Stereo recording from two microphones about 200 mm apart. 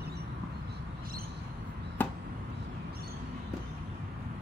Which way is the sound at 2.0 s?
10° left (ahead or behind).